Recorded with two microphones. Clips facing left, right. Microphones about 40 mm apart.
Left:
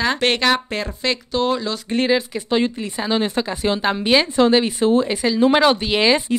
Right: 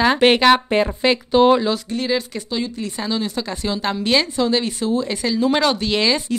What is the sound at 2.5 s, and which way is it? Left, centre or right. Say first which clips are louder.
Speech: left 9 dB; left.